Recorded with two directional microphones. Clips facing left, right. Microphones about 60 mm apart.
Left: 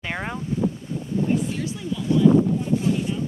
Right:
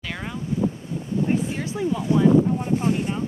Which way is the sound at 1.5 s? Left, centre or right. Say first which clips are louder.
Right 3 dB; right.